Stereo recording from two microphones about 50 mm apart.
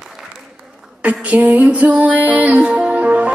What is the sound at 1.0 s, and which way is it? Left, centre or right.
Music, right.